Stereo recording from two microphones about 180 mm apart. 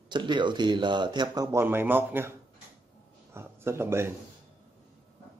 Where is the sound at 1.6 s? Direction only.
10° right (ahead or behind).